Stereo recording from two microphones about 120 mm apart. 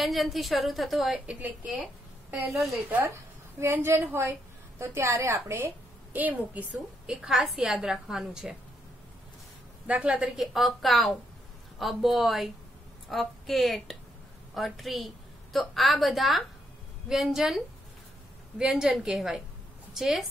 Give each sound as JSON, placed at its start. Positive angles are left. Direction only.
{"t": 0.0, "sound": "a woman's voice", "side_deg": 0}
{"t": 3.5, "sound": "a woman's voice", "side_deg": -20}
{"t": 9.8, "sound": "a woman's voice", "side_deg": -10}